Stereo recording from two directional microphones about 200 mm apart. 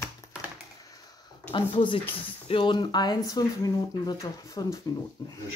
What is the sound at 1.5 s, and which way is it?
Speech, 25° left (ahead or behind).